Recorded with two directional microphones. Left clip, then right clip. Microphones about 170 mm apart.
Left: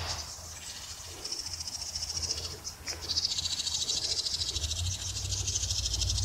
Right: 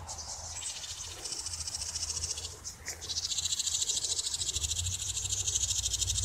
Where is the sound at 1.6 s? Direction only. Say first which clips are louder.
Even; 20° left (ahead or behind).